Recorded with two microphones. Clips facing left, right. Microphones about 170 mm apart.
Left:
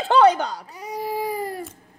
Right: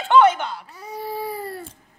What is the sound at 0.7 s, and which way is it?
Baby cry, 15° left (ahead or behind).